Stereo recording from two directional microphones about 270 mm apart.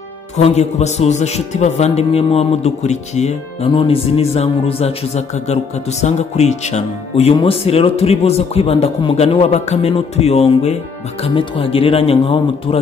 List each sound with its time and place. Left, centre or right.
0.4 s a man's voice: left